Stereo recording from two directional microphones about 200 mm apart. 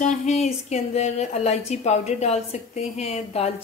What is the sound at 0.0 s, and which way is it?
A woman's voice, 35° left (ahead or behind).